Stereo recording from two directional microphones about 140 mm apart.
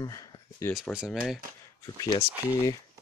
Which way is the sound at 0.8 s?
5° right (ahead or behind).